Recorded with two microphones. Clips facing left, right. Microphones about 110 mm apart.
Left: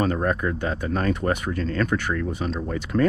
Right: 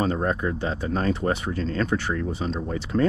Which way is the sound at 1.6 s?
30° right (ahead or behind).